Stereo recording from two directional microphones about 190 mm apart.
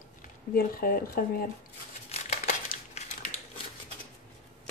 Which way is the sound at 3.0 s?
35° left (ahead or behind).